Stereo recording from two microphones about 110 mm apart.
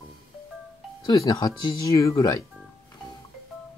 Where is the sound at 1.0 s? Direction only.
30° left (ahead or behind).